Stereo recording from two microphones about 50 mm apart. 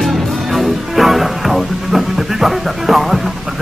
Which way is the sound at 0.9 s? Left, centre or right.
Centre.